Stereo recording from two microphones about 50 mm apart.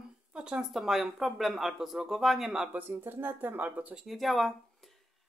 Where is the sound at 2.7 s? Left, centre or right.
Right.